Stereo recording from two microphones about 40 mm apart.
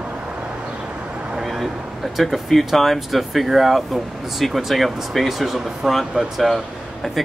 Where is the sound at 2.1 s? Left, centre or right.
Centre.